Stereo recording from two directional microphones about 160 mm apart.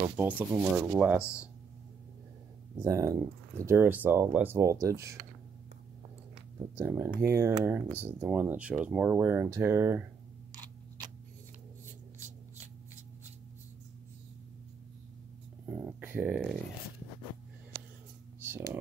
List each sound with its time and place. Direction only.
0.0 s speech: 10° right (ahead or behind)
2.8 s speech: 20° right (ahead or behind)
6.8 s speech: 15° right (ahead or behind)
15.6 s a sound: 10° right (ahead or behind)
18.4 s computer keyboard: 15° right (ahead or behind)